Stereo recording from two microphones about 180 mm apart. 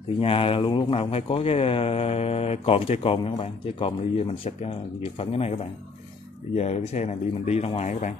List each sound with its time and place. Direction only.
0.2 s speech: 30° left (ahead or behind)